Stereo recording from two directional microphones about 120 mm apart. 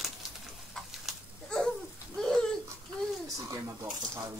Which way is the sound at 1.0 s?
5° left (ahead or behind).